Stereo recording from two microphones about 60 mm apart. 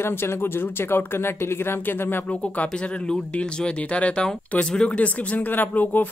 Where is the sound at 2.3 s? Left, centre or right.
Left.